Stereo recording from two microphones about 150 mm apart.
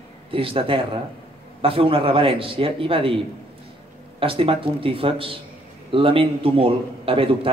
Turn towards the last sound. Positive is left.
turn(degrees=-35)  # may be behind; listen again after turning